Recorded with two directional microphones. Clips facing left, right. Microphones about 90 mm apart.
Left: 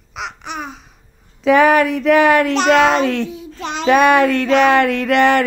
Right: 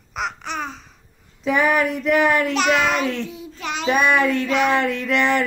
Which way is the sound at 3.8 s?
80° left.